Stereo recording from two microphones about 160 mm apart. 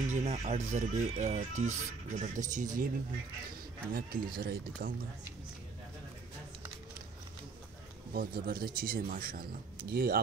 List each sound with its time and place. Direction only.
0.1 s speech: 40° right (ahead or behind)
3.9 s speech: 65° right (ahead or behind)
8.1 s a man's voice: 65° right (ahead or behind)